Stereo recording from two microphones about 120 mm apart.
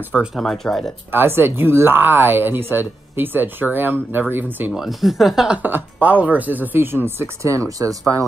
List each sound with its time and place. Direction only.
0.4 s speech: centre (ahead or behind)
1.1 s speech: 20° right (ahead or behind)
4.7 s speech: centre (ahead or behind)
5.6 s speech: 15° right (ahead or behind)